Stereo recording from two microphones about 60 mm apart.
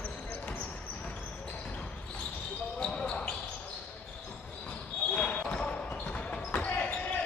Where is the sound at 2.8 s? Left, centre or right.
Centre.